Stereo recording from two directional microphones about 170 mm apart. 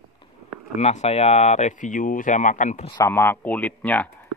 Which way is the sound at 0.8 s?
40° left (ahead or behind).